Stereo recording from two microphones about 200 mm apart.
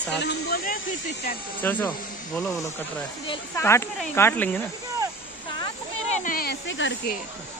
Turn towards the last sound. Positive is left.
turn(degrees=65)  # may be behind; listen again after turning